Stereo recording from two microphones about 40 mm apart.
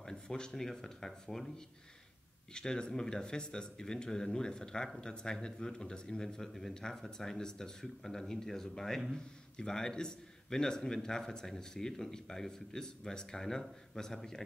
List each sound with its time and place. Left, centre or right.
0.0 s speech: centre
2.5 s a man's voice: centre